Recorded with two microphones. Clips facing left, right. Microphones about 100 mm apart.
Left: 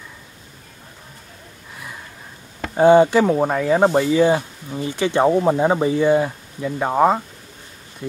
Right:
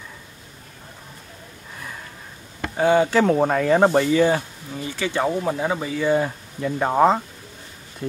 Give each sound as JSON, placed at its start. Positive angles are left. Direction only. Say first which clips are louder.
{"t": 2.7, "sound": "speech", "louder": "left 6 dB", "side_deg": 20}
{"t": 6.0, "sound": "speech", "louder": "left 3 dB", "side_deg": 10}